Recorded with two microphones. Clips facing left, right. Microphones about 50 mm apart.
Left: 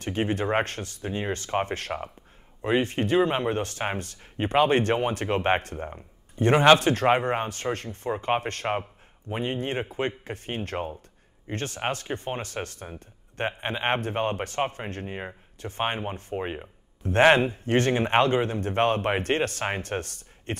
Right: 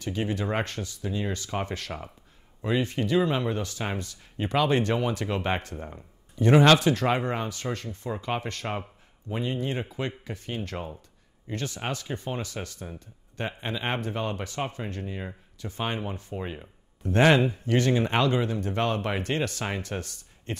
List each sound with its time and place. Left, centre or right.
0.0 s speech: left
6.5 s speech: left
6.8 s speech: left